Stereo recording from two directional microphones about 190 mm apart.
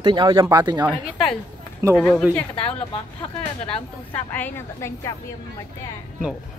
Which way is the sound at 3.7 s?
10° left (ahead or behind).